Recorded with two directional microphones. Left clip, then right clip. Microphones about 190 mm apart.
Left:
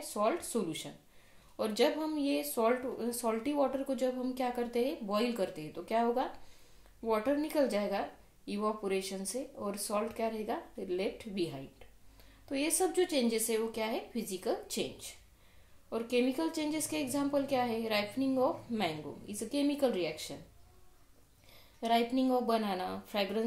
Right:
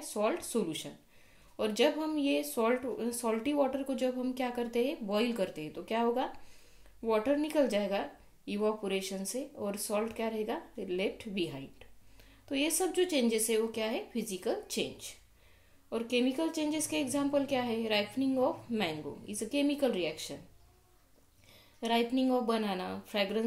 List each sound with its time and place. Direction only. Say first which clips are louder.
0.1 s speech: even; 20° right (ahead or behind)
21.7 s speech: even; 20° right (ahead or behind)